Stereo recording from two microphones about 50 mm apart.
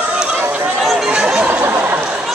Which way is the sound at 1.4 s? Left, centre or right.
Right.